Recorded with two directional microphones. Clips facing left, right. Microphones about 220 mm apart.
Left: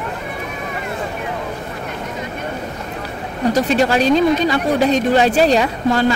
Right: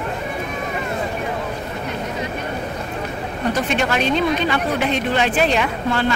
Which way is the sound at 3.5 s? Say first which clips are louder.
Left 6 dB; 40° left (ahead or behind).